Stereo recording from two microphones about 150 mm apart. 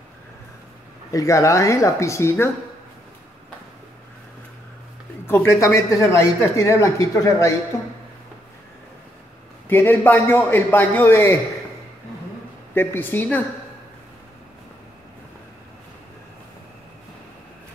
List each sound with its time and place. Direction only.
1.1 s speech: 20° left (ahead or behind)
5.2 s speech: 20° left (ahead or behind)
9.7 s a man's voice: 15° left (ahead or behind)
12.7 s a man's voice: 15° left (ahead or behind)